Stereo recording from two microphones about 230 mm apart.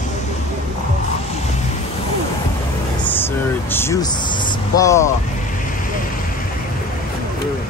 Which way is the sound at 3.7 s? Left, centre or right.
Centre.